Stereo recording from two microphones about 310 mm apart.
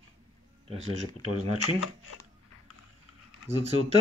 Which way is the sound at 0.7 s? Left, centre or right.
Centre.